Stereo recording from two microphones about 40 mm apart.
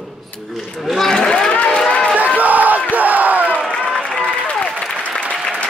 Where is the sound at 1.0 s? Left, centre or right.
Centre.